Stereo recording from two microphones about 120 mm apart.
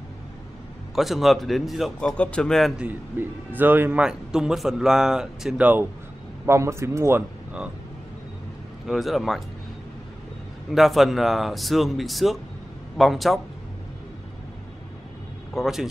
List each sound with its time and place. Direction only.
0.9 s speech: centre (ahead or behind)
2.8 s speech: 15° right (ahead or behind)
6.4 s speech: 20° right (ahead or behind)
8.8 s speech: centre (ahead or behind)
10.7 s speech: centre (ahead or behind)
15.5 s speech: 5° right (ahead or behind)